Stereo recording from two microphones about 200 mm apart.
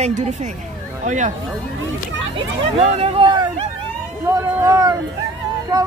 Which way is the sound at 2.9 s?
30° right (ahead or behind).